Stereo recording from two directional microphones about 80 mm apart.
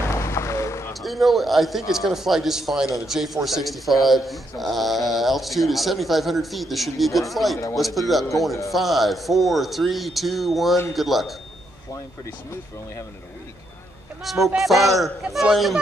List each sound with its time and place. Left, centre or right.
0.1 s a sound: left
1.0 s speech: centre
14.2 s speech: centre